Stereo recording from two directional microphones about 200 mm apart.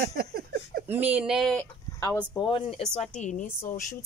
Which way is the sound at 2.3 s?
25° left (ahead or behind).